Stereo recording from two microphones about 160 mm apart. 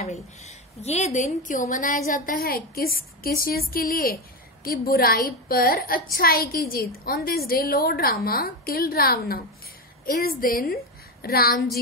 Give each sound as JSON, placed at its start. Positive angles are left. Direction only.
{"t": 0.0, "sound": "a woman's voice", "side_deg": 45}